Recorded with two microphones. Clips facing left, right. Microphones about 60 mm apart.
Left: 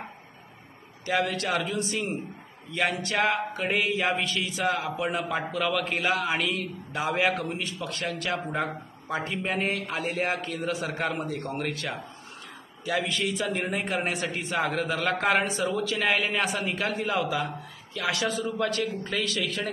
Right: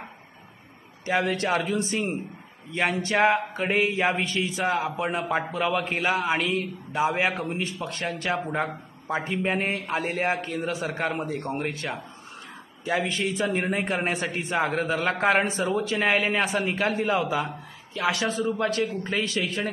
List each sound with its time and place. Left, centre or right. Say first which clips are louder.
1.0 s speech: right 2 dB; right
12.8 s a man's voice: right 2 dB; right